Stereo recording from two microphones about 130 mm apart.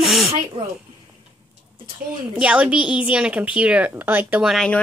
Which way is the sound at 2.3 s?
10° right (ahead or behind).